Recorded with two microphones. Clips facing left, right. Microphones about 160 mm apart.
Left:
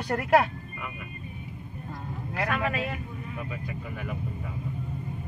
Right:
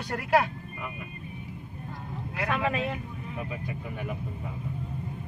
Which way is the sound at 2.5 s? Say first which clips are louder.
Right 3 dB; 20° right (ahead or behind).